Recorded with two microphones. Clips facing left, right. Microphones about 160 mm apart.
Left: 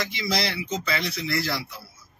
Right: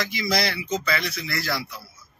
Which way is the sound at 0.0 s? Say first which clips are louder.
Right 2 dB; 25° left (ahead or behind).